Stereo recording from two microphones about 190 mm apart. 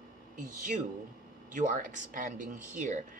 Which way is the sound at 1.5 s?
40° right (ahead or behind).